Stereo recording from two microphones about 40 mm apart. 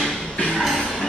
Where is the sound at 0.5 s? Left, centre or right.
Centre.